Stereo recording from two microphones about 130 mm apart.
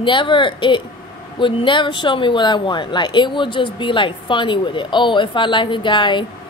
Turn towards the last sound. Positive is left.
turn(degrees=35)  # may be behind; listen again after turning